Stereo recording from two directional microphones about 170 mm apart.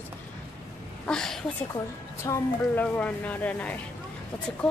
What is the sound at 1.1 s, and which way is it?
Speech, 5° left (ahead or behind).